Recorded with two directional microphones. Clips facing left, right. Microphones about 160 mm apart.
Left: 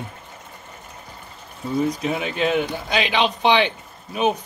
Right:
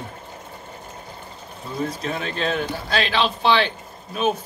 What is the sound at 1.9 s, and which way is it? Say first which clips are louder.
Speech: left 3 dB; 10° left (ahead or behind).